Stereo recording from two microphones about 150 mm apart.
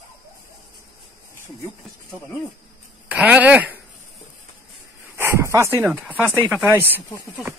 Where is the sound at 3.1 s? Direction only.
10° right (ahead or behind).